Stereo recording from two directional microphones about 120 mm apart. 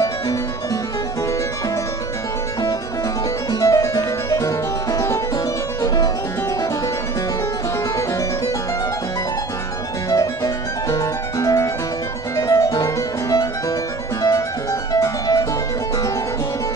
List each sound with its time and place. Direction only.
3.5 s music: 30° left (ahead or behind)
10.0 s music: 30° left (ahead or behind)